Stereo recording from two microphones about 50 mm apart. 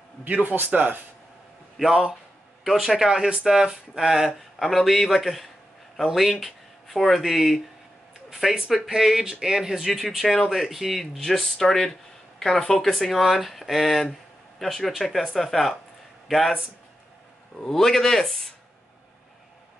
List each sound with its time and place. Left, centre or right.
0.2 s speech: right
1.8 s speech: centre
4.6 s speech: centre
8.6 s speech: centre
17.6 s speech: centre